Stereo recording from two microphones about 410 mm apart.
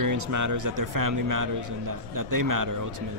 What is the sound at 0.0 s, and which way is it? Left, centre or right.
Speech, right.